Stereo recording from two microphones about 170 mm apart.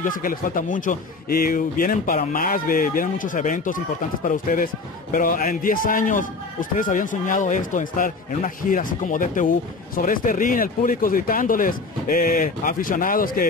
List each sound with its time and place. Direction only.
0.0 s a man's voice: 55° left (ahead or behind)